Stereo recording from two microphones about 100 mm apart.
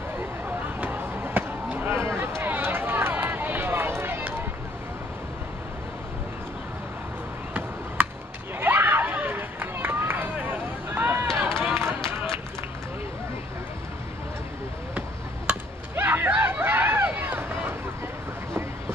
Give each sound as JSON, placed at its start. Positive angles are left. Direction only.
{"t": 0.2, "sound": "basketball bounce", "side_deg": -15}
{"t": 8.0, "sound": "chop", "side_deg": -20}
{"t": 8.5, "sound": "run", "side_deg": -20}
{"t": 15.9, "sound": "run", "side_deg": -20}